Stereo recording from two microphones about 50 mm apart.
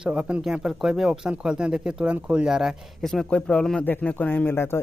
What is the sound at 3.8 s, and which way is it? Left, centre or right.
Speech, left.